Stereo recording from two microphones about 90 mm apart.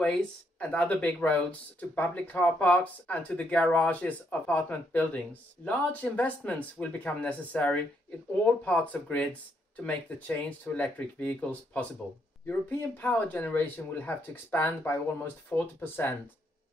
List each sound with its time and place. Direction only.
0.0 s speech: 15° left (ahead or behind)